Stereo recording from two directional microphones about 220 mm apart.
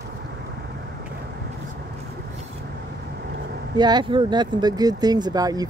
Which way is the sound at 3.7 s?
20° right (ahead or behind).